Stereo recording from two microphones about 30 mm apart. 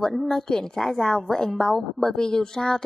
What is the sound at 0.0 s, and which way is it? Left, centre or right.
A woman's voice, centre.